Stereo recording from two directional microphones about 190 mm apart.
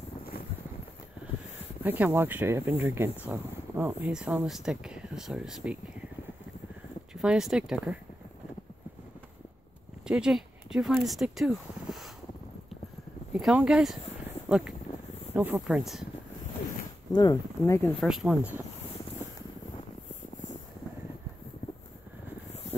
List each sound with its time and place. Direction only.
1.8 s speech: 10° right (ahead or behind)
7.2 s speech: centre (ahead or behind)
10.0 s speech: 5° right (ahead or behind)
13.3 s speech: 5° right (ahead or behind)
14.5 s a sound: 5° right (ahead or behind)
15.3 s speech: 10° right (ahead or behind)
17.1 s speech: 20° left (ahead or behind)
18.0 s speech: 5° right (ahead or behind)